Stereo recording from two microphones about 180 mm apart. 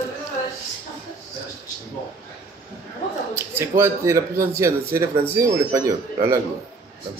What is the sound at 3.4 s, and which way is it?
A man's voice, 15° right (ahead or behind).